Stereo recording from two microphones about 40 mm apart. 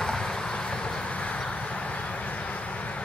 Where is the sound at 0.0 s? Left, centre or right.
Centre.